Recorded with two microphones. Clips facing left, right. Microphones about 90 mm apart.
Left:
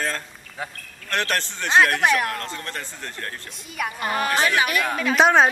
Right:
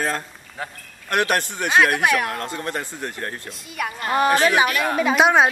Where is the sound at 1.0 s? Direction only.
15° right (ahead or behind).